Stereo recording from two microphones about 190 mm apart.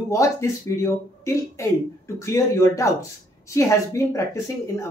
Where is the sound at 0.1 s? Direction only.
15° left (ahead or behind).